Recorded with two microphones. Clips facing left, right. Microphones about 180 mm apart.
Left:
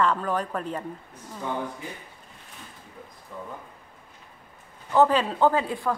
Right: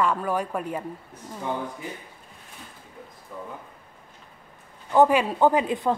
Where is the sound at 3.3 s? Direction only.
10° right (ahead or behind).